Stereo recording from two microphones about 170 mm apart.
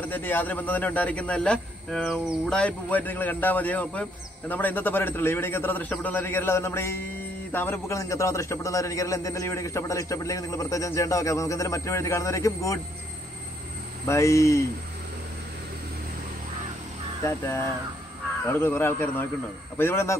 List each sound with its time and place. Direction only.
0.1 s a man's voice: 10° left (ahead or behind)
14.0 s a man's voice: 15° left (ahead or behind)
18.4 s a man's voice: 15° left (ahead or behind)